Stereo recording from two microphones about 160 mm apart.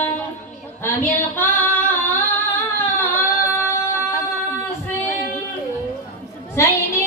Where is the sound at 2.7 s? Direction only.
15° left (ahead or behind).